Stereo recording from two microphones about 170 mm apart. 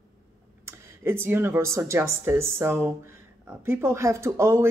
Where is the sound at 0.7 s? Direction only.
15° right (ahead or behind).